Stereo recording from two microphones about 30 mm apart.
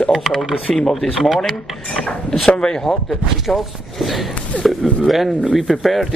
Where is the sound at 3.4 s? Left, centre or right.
Centre.